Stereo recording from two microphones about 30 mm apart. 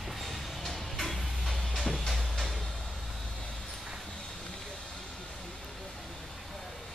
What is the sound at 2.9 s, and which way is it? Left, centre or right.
Vehicle, centre.